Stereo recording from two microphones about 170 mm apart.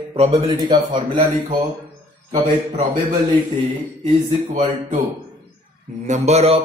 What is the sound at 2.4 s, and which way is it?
Speech, 50° right (ahead or behind).